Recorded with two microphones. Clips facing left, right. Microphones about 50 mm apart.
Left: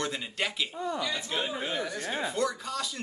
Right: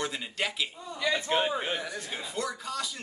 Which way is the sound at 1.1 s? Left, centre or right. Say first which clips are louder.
Right 5 dB; right.